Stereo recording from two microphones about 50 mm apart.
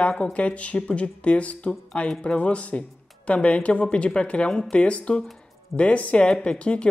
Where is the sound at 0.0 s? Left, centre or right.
Left.